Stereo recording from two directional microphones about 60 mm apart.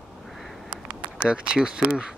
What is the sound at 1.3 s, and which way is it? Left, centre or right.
Speech, centre.